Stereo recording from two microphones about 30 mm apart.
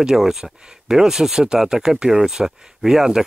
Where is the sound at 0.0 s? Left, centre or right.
Centre.